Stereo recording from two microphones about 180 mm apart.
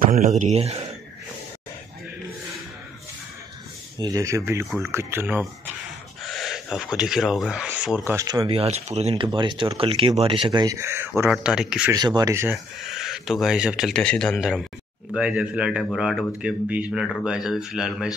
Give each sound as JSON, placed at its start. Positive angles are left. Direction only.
{"t": 0.0, "sound": "speech", "side_deg": -45}
{"t": 4.0, "sound": "speech", "side_deg": -20}
{"t": 4.6, "sound": "speech", "side_deg": 0}
{"t": 4.9, "sound": "speech", "side_deg": -10}
{"t": 6.2, "sound": "speech", "side_deg": 0}
{"t": 8.0, "sound": "speech", "side_deg": -15}
{"t": 11.3, "sound": "speech", "side_deg": 0}
{"t": 11.9, "sound": "speech", "side_deg": -20}
{"t": 12.8, "sound": "speech", "side_deg": 0}